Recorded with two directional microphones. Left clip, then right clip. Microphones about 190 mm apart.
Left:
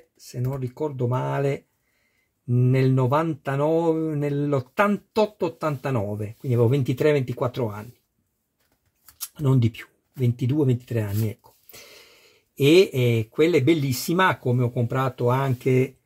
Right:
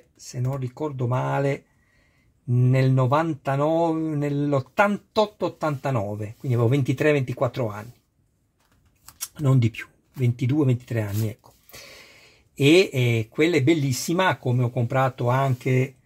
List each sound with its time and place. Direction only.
0.6 s speech: 10° right (ahead or behind)
9.3 s speech: 15° right (ahead or behind)